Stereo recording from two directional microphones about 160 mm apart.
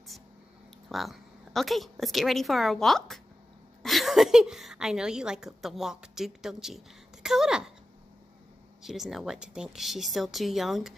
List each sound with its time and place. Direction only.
0.8 s a woman's voice: centre (ahead or behind)
8.8 s speech: centre (ahead or behind)